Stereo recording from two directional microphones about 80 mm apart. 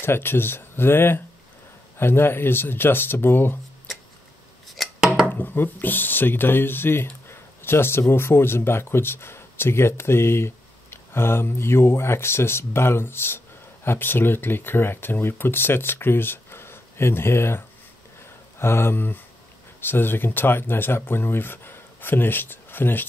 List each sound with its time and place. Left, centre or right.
0.0 s speech: left
4.7 s chopping: centre
5.3 s speech: left
18.2 s a sound: left
19.8 s speech: left